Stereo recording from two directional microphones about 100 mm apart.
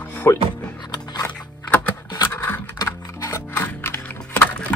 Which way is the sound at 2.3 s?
20° left (ahead or behind).